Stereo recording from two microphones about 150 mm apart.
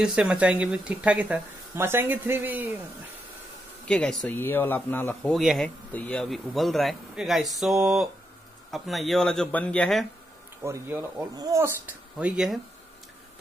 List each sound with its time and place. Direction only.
0.0 s speech: 5° right (ahead or behind)
3.8 s speech: 5° left (ahead or behind)
5.3 s speech: centre (ahead or behind)
10.6 s speech: 15° right (ahead or behind)